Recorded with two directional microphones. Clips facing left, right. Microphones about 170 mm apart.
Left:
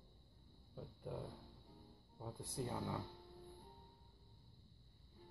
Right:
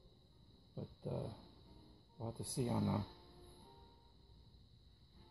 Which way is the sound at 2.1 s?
15° right (ahead or behind).